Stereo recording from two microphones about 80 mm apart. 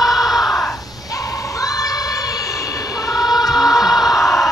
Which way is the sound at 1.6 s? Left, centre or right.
Left.